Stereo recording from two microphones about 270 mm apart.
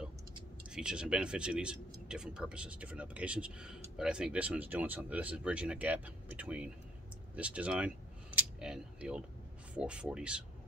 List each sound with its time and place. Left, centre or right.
0.7 s speech: centre